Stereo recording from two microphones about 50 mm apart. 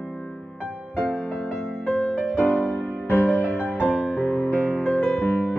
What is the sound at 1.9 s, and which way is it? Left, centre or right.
Music, left.